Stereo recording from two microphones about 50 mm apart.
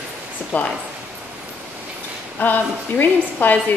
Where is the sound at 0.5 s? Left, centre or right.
Left.